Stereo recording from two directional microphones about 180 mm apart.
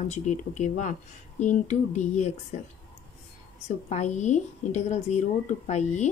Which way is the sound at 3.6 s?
40° left (ahead or behind).